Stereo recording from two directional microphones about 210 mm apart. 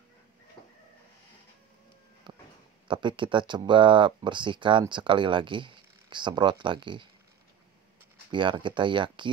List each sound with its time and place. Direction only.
2.3 s a sound: 20° right (ahead or behind)
2.9 s speech: 25° right (ahead or behind)
8.3 s speech: 20° right (ahead or behind)